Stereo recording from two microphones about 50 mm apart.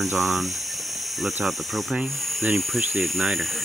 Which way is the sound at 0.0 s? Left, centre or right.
Centre.